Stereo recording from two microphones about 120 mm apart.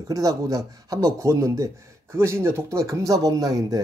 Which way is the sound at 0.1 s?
30° right (ahead or behind).